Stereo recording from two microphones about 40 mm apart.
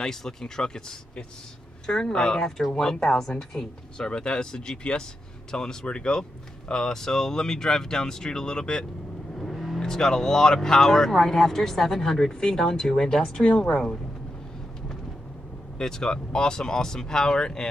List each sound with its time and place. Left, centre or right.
0.0 s speech: centre
9.4 s vehicle: centre
9.8 s speech: centre
15.8 s speech: centre